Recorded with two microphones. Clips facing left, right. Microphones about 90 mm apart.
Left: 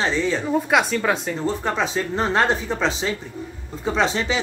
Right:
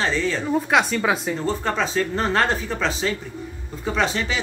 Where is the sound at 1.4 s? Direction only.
15° left (ahead or behind).